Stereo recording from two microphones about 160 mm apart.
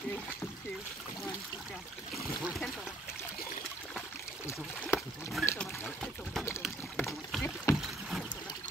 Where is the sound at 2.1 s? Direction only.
Centre (ahead or behind).